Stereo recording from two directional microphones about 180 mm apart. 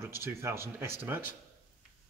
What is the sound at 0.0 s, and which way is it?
Speech, 15° right (ahead or behind).